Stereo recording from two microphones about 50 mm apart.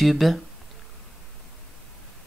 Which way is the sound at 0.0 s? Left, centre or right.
Centre.